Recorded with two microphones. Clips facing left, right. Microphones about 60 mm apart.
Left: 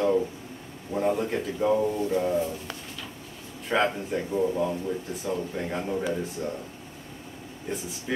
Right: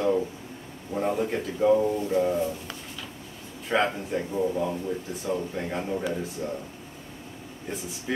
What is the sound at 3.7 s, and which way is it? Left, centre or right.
Speech, centre.